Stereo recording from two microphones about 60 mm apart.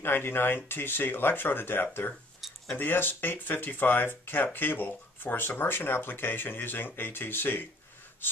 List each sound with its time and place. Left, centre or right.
0.0 s speech: left